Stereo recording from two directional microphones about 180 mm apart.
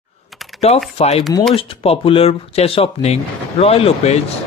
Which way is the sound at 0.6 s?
35° left (ahead or behind).